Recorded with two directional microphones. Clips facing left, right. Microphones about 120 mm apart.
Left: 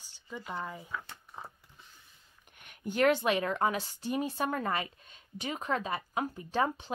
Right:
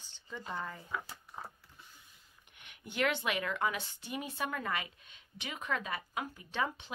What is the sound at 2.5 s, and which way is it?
Speech, 45° left (ahead or behind).